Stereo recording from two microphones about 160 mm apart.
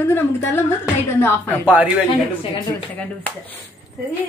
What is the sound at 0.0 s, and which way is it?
Speech, 15° left (ahead or behind).